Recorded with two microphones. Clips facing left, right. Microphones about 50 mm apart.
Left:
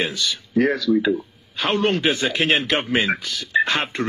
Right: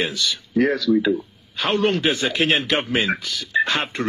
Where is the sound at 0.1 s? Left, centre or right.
Left.